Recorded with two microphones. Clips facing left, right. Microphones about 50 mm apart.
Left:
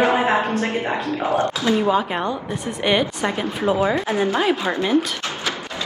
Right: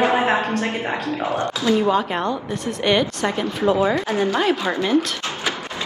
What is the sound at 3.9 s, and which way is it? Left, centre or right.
Speech, left.